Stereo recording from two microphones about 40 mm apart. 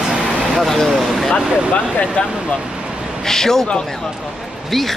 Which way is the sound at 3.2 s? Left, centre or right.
Centre.